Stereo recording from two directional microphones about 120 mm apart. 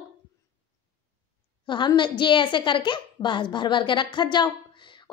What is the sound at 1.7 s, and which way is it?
A woman's voice, 40° left (ahead or behind).